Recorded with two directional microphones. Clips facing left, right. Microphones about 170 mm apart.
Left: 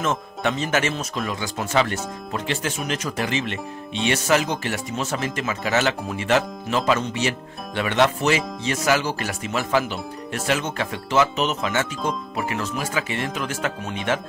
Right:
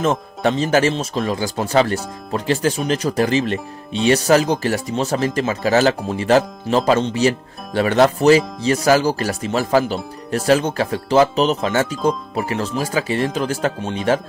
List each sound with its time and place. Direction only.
0.0 s speech: 35° right (ahead or behind)